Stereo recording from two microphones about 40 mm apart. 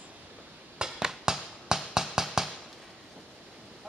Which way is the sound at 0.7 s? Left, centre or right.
Centre.